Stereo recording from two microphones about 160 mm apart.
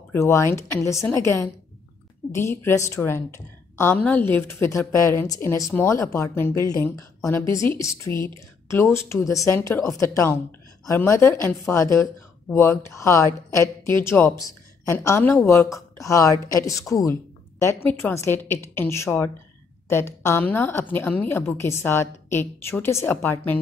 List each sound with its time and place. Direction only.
0.1 s a woman's voice: 15° left (ahead or behind)